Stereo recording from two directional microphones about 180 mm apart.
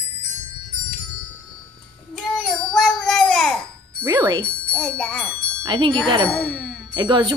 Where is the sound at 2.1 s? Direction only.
Centre (ahead or behind).